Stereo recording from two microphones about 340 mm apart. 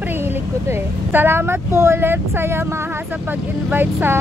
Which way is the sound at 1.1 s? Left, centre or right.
Centre.